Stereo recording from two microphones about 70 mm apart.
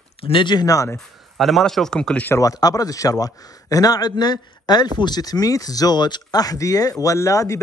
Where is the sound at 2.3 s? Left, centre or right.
Left.